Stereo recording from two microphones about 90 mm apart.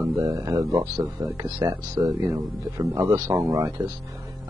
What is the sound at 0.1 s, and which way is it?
Speech, 40° right (ahead or behind).